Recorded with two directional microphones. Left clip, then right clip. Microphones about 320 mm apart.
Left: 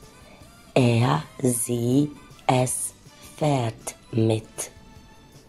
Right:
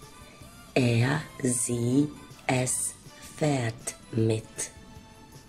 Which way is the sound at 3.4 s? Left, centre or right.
Centre.